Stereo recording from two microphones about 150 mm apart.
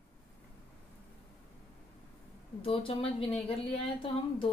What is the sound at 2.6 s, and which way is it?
Speech, 40° left (ahead or behind).